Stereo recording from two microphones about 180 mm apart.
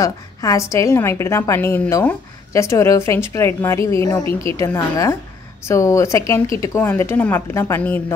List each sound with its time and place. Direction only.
0.0 s a woman's voice: 20° left (ahead or behind)